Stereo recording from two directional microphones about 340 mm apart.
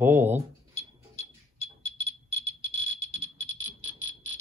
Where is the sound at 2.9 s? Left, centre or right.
Right.